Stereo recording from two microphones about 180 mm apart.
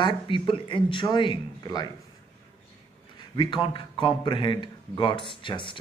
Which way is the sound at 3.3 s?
25° left (ahead or behind).